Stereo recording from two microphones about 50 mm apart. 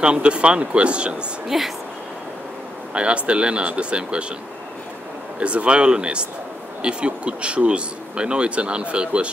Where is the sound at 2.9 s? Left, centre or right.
Right.